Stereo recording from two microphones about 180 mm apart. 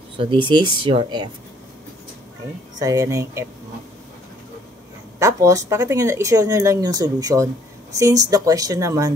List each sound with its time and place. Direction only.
0.2 s speech: 25° right (ahead or behind)
2.8 s speech: 20° right (ahead or behind)
5.2 s speech: 15° right (ahead or behind)